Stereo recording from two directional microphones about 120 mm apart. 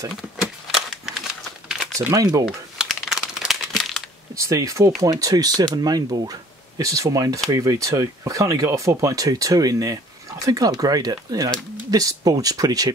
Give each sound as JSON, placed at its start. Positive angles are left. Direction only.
{"t": 0.4, "sound": "a sound", "side_deg": -5}
{"t": 2.0, "sound": "speech", "side_deg": -30}
{"t": 2.8, "sound": "crumpling", "side_deg": -5}
{"t": 4.5, "sound": "speech", "side_deg": -25}